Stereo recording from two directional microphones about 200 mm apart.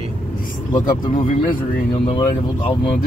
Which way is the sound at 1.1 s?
45° left (ahead or behind).